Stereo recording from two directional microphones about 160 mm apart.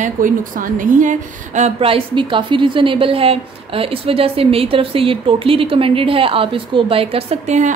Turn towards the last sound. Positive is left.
turn(degrees=-45)  # may be behind; listen again after turning